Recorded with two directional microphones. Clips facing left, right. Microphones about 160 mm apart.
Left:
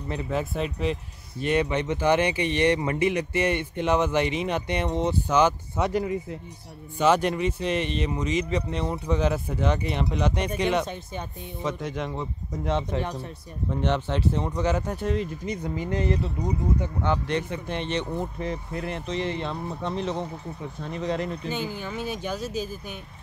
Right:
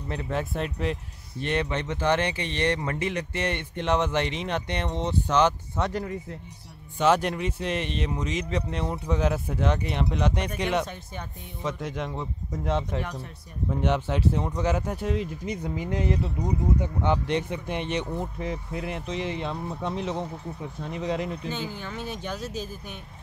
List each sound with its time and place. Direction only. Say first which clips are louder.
0.1 s speech: left 1 dB; 5° left (ahead or behind)
13.0 s speech: left 3 dB; 30° left (ahead or behind)
13.7 s speech: even; 5° right (ahead or behind)
16.8 s speech: right 1 dB; 20° right (ahead or behind)
21.5 s speech: left 2 dB; 10° left (ahead or behind)